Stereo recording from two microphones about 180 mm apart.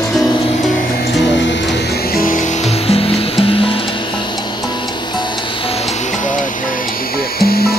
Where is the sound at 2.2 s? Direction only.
50° left (ahead or behind).